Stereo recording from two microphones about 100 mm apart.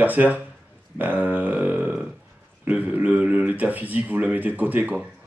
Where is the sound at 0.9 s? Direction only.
15° right (ahead or behind).